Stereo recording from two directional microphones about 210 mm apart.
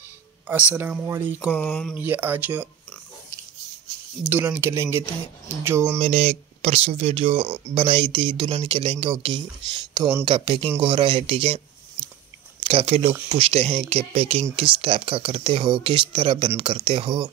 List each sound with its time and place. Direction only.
0.5 s speech: 10° right (ahead or behind)
1.5 s speech: 5° left (ahead or behind)
2.0 s speech: 10° right (ahead or behind)
4.2 s speech: 5° right (ahead or behind)
5.9 s speech: 30° right (ahead or behind)
12.6 s speech: 25° right (ahead or behind)